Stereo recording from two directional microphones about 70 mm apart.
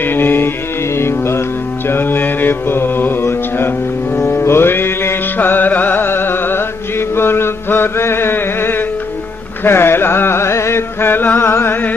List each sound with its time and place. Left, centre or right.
0.0 s music: left
1.9 s mantra: left
4.2 s music: left
7.2 s a sound: left
9.7 s music: left